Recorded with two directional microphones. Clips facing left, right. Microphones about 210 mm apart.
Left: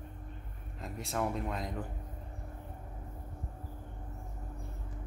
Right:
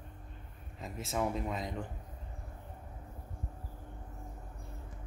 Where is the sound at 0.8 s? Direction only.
Centre (ahead or behind).